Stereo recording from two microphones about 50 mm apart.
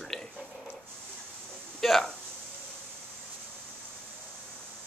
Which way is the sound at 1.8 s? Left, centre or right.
Centre.